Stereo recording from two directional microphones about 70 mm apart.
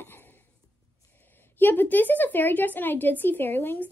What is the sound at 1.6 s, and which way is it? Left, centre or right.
A woman's voice, left.